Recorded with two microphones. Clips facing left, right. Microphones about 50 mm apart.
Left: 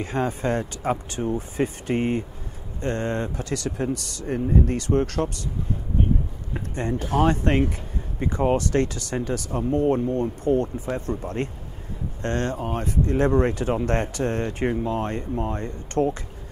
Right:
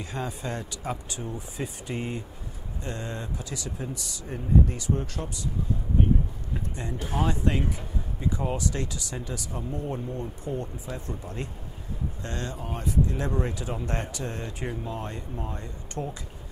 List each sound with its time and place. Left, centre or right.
0.0 s speech: left
6.7 s speech: left